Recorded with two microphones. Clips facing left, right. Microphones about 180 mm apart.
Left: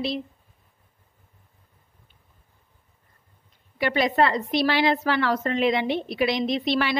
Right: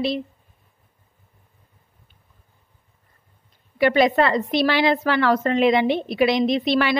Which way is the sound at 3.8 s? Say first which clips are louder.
Right 4 dB; 65° right (ahead or behind).